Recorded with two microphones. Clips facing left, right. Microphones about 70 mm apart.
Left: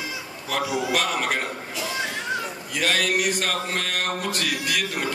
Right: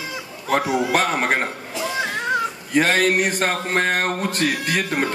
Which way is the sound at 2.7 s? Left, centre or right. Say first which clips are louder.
Right 6 dB; right.